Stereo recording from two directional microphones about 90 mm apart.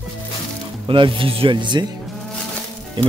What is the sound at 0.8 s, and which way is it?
Speech, 65° right (ahead or behind).